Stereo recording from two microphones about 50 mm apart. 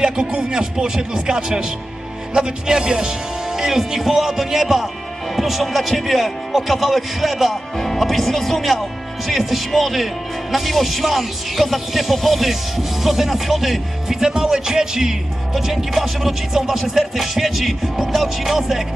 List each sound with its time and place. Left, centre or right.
0.0 s music: centre
5.3 s speech: centre